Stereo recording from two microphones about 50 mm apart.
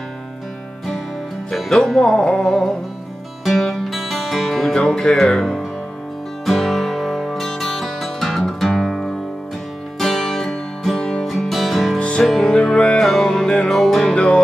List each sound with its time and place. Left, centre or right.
1.5 s speech: centre
2.0 s music: centre
3.4 s music: centre
4.7 s music: centre
11.2 s music: centre
12.0 s music: left
13.0 s music: centre
14.0 s music: left